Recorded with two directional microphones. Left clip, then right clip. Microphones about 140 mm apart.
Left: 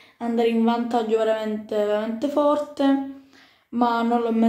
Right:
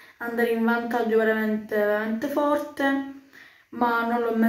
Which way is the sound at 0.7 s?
10° right (ahead or behind).